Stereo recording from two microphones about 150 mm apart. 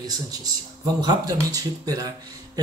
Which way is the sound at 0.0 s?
25° right (ahead or behind).